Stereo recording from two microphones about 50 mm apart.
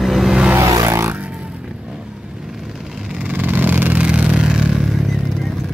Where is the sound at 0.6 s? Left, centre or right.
Right.